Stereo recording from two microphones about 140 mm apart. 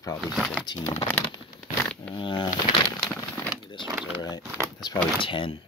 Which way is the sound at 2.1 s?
35° left (ahead or behind).